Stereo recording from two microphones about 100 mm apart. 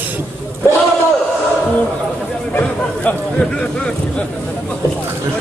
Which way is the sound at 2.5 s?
15° left (ahead or behind).